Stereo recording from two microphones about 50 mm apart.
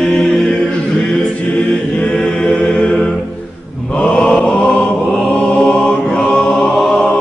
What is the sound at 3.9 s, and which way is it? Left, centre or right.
Mantra, left.